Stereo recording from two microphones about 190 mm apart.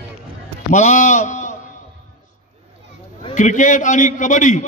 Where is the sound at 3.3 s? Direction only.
40° left (ahead or behind).